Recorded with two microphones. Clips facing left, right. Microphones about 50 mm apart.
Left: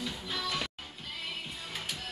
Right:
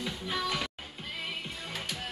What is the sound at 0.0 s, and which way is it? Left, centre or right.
Music, centre.